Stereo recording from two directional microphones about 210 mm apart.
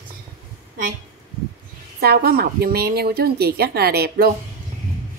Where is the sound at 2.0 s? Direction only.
45° right (ahead or behind).